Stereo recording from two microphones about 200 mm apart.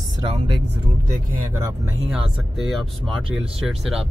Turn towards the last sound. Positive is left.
turn(degrees=0)  # may be behind; listen again after turning